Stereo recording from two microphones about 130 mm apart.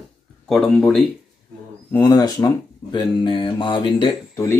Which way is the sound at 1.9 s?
30° left (ahead or behind).